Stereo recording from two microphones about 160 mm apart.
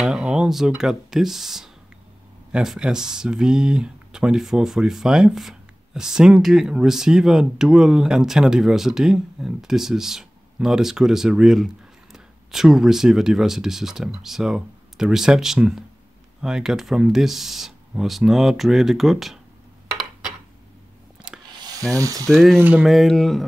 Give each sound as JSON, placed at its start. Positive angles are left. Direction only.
{"t": 0.0, "sound": "speech", "side_deg": -5}
{"t": 21.3, "sound": "rub", "side_deg": -5}
{"t": 21.9, "sound": "sizzle", "side_deg": -20}
{"t": 22.3, "sound": "speech", "side_deg": 0}